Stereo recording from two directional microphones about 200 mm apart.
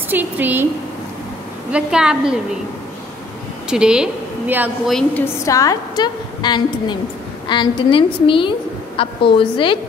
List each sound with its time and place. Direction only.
0.1 s a woman's voice: 10° right (ahead or behind)
1.7 s a woman's voice: 5° right (ahead or behind)
3.7 s a woman's voice: 5° right (ahead or behind)
4.9 s a woman's voice: 10° left (ahead or behind); by 9.8 s 25° left (ahead or behind)